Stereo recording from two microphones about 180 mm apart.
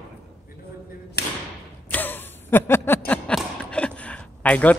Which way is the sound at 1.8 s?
10° left (ahead or behind).